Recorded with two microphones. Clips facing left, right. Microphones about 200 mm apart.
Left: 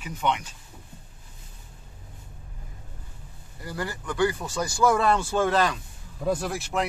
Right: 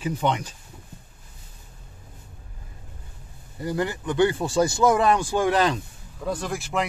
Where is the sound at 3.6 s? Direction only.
20° right (ahead or behind).